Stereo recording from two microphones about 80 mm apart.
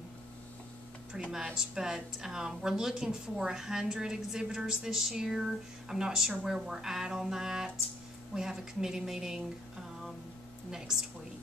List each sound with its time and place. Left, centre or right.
1.3 s a woman's voice: centre